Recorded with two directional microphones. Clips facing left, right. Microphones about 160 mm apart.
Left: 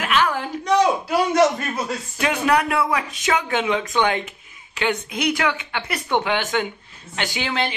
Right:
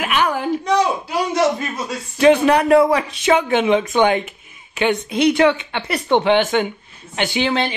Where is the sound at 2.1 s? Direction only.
30° right (ahead or behind).